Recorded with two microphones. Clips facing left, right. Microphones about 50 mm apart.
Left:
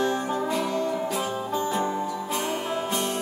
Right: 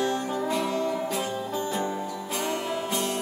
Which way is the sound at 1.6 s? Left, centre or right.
Left.